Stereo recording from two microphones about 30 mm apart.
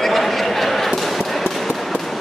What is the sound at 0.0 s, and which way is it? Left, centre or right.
Basketball bounce, centre.